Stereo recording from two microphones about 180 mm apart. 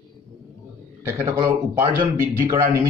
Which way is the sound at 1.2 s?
15° right (ahead or behind).